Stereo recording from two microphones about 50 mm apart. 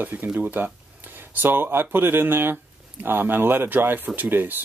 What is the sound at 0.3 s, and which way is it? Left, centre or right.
Speech, right.